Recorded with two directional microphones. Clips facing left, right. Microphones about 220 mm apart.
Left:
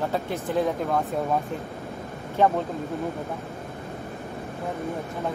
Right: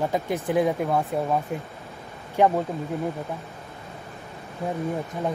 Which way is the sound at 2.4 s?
15° right (ahead or behind).